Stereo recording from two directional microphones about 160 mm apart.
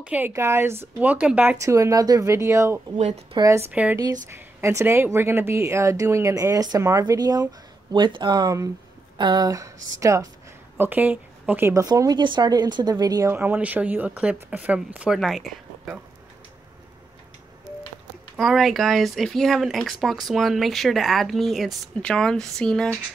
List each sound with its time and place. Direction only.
0.0 s speech: 10° right (ahead or behind)
1.6 s speech: 20° right (ahead or behind)
3.7 s speech: 10° right (ahead or behind)
18.3 s speech: centre (ahead or behind)